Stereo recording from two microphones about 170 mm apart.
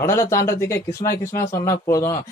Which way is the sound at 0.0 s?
15° left (ahead or behind).